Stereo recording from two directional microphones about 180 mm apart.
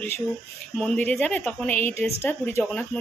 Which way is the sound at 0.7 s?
5° left (ahead or behind).